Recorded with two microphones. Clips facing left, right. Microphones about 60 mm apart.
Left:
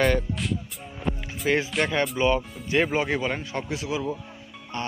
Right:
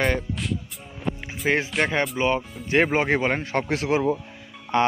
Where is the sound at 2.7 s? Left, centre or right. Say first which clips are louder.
Right 3 dB; right.